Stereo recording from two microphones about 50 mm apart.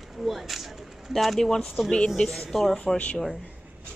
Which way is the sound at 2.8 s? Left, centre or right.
Left.